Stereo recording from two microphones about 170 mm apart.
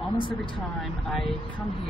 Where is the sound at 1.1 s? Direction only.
Centre (ahead or behind).